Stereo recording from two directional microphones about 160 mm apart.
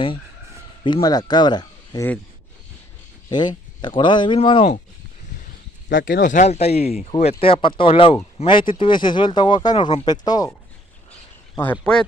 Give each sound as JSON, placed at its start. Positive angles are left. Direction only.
{"t": 0.8, "sound": "speech", "side_deg": 25}
{"t": 3.3, "sound": "speech", "side_deg": 25}
{"t": 6.0, "sound": "speech", "side_deg": 60}
{"t": 11.5, "sound": "speech", "side_deg": 10}